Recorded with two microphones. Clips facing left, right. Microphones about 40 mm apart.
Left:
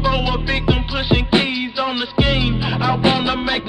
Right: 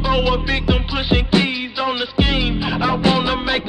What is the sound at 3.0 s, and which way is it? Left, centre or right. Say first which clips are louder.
Music: left 1 dB; left.